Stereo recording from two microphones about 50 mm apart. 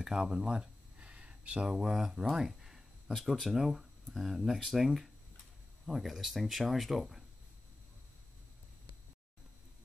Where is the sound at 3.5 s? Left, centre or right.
Centre.